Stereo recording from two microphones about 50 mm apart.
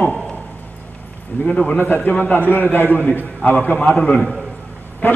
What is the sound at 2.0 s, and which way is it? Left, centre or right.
Speech, left.